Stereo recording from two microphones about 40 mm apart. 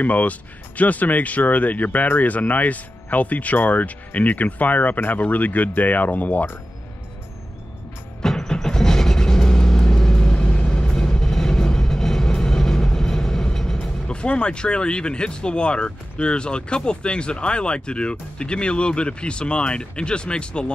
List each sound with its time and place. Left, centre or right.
0.0 s speech: left
8.2 s vehicle: centre
14.0 s speech: left